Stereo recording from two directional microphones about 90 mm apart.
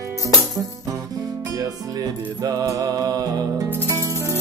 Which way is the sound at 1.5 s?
40° right (ahead or behind).